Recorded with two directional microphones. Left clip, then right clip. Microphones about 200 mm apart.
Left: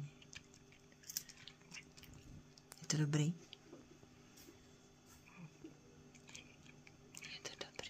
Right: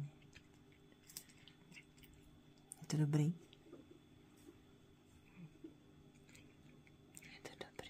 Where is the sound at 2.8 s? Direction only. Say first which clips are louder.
Left 1 dB; 30° right (ahead or behind).